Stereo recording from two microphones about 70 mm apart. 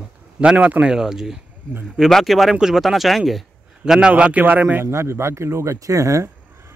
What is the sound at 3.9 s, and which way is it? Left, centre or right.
Speech, centre.